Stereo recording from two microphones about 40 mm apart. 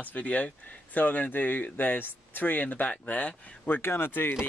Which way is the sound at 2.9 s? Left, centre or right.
Left.